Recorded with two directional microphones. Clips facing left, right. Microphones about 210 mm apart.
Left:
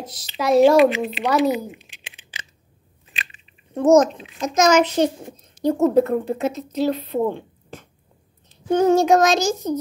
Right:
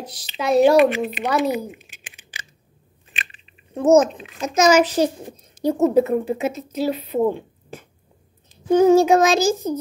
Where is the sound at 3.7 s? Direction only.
5° right (ahead or behind).